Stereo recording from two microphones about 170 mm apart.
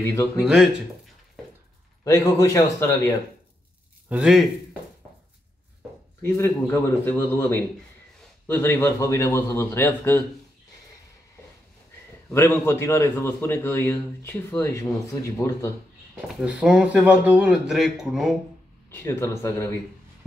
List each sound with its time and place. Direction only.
0.5 s speech: 5° right (ahead or behind)
2.0 s a man's voice: 20° left (ahead or behind)
4.1 s speech: 5° right (ahead or behind)
6.2 s a man's voice: 15° left (ahead or behind)
12.3 s a man's voice: 15° left (ahead or behind)
16.3 s speech: 5° right (ahead or behind)
18.9 s a man's voice: 15° left (ahead or behind)